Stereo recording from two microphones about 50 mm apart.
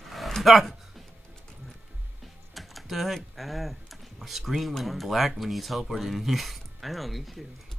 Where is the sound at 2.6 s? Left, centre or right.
Centre.